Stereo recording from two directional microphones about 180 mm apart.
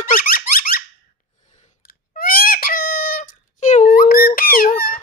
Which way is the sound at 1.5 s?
50° left (ahead or behind).